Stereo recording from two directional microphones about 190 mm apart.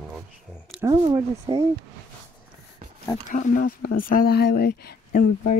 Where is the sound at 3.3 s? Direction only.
45° left (ahead or behind).